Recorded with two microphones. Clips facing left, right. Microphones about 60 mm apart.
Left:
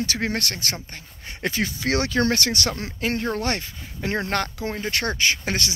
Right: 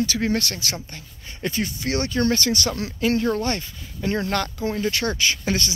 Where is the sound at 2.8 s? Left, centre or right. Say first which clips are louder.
Right 4 dB; left.